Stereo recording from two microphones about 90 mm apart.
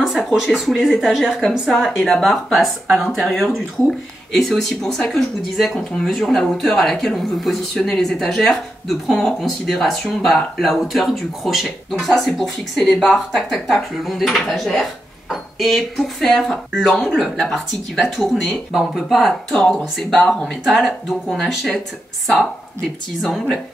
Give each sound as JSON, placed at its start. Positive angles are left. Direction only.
{"t": 0.0, "sound": "speech", "side_deg": -5}
{"t": 23.2, "sound": "speech", "side_deg": 5}